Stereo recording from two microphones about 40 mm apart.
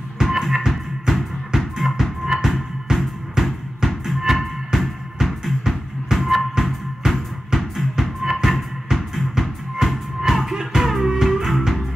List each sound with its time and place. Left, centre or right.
0.4 s music: centre